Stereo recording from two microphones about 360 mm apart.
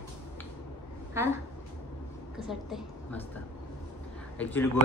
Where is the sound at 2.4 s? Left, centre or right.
Centre.